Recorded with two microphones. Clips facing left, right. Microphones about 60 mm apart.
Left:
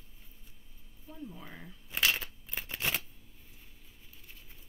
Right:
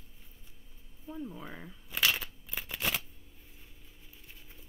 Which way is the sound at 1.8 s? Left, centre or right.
Centre.